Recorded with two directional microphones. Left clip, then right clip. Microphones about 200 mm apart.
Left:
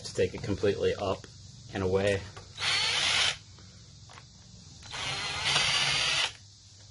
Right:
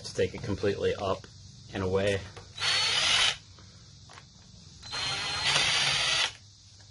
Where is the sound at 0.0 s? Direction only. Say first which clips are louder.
Even; 25° left (ahead or behind).